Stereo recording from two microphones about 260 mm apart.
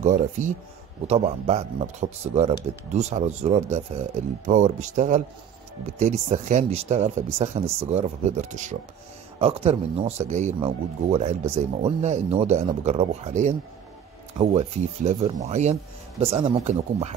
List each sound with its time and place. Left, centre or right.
0.0 s speech: right